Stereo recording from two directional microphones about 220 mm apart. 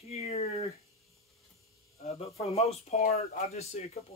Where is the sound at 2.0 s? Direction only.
30° left (ahead or behind).